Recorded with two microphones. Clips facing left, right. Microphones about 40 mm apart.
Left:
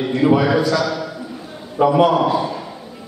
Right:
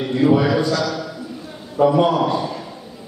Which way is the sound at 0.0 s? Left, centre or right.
Centre.